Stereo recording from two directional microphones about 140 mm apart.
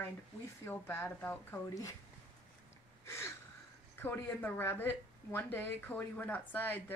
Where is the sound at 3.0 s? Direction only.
20° left (ahead or behind).